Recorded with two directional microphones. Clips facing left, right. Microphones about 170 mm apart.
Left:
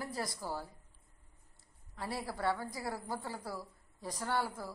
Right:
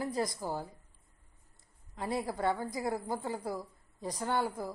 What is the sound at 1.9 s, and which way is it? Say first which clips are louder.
A woman's voice: right 5 dB; 20° right (ahead or behind).